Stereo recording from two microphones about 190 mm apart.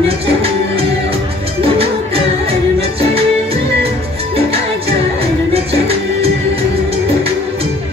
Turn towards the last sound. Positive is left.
turn(degrees=-30)  # may be behind; listen again after turning